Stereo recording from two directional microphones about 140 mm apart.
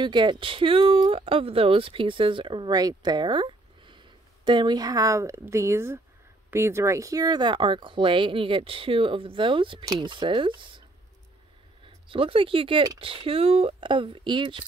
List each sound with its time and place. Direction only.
0.0 s a woman's voice: 35° right (ahead or behind)
11.8 s speech: 40° right (ahead or behind)